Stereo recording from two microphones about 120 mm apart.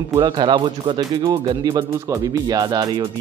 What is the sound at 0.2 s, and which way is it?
Speech, 45° right (ahead or behind).